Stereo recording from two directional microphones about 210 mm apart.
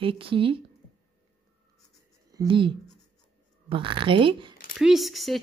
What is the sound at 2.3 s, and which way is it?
A woman's voice, 20° right (ahead or behind).